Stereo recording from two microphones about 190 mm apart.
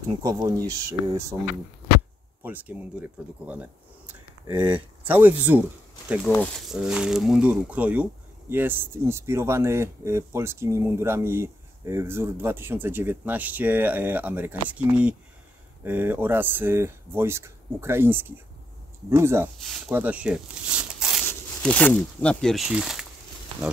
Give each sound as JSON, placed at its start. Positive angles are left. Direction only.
{"t": 0.2, "sound": "speech", "side_deg": -20}
{"t": 21.3, "sound": "speech", "side_deg": 10}